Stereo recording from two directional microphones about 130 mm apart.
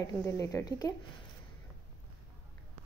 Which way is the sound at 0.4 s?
25° left (ahead or behind).